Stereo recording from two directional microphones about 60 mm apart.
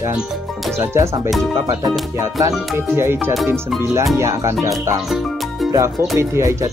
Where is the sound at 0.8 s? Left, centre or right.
Right.